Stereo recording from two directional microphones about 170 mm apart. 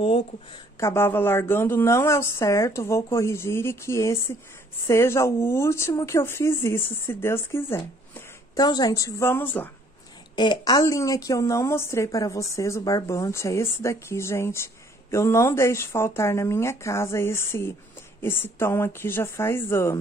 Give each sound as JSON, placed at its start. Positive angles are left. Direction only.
{"t": 0.0, "sound": "speech", "side_deg": 35}
{"t": 0.7, "sound": "a woman's voice", "side_deg": 15}
{"t": 10.3, "sound": "a woman's voice", "side_deg": 25}